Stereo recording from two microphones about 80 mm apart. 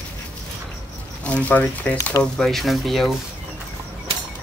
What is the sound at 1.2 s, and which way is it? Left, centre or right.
Speech, centre.